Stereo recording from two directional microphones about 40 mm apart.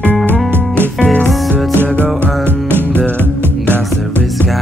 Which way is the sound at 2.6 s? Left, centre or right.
Right.